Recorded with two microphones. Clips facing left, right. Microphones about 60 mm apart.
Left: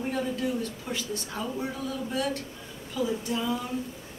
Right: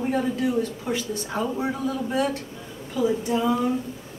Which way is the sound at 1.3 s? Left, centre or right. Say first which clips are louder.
Right 8 dB; right.